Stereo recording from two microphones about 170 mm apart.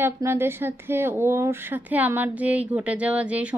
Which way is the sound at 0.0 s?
15° right (ahead or behind).